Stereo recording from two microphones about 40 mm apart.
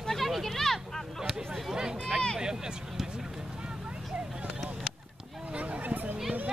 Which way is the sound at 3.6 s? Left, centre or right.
Right.